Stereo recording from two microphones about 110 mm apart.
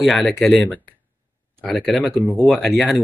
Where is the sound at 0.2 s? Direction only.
10° left (ahead or behind).